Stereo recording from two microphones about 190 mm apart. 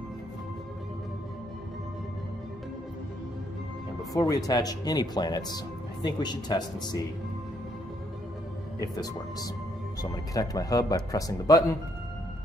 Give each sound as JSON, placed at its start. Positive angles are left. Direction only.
{"t": 4.1, "sound": "speech", "side_deg": 20}
{"t": 8.7, "sound": "speech", "side_deg": 20}